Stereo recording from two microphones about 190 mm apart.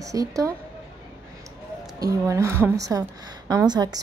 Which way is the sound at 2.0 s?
15° right (ahead or behind).